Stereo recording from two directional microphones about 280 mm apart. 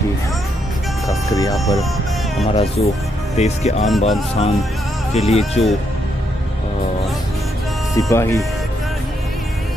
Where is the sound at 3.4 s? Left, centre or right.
Left.